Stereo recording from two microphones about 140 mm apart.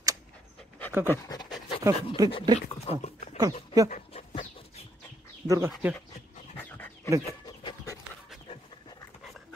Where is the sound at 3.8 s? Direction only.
45° left (ahead or behind).